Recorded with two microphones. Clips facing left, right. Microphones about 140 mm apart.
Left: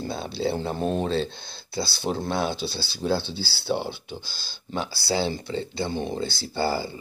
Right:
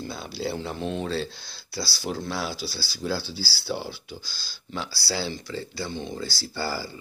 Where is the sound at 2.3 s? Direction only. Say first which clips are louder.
Left 5 dB; 20° left (ahead or behind).